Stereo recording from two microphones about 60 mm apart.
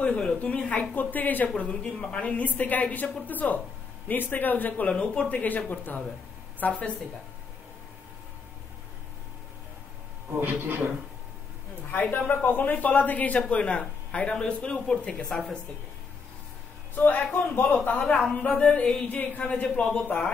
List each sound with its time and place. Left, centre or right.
0.0 s speech: centre
0.7 s a man's voice: left
10.4 s a man's voice: right
11.9 s a man's voice: left; by 15.2 s centre
15.2 s a sound: centre
16.9 s a man's voice: left
18.5 s a sound: centre
19.0 s speech: left
19.7 s a sound: centre